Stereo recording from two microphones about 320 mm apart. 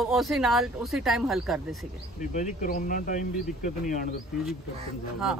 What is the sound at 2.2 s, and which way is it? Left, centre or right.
Speech, left.